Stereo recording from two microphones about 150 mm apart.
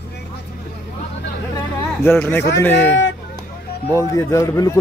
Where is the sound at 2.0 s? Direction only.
15° left (ahead or behind).